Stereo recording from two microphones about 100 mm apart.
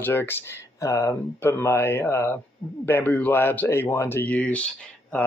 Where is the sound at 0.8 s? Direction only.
35° left (ahead or behind).